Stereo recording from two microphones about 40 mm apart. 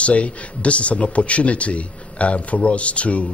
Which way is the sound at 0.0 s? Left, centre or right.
Left.